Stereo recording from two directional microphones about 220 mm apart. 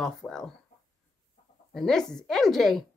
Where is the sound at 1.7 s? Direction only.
Centre (ahead or behind).